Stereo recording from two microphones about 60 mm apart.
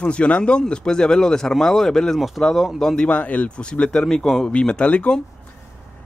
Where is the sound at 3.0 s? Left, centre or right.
Left.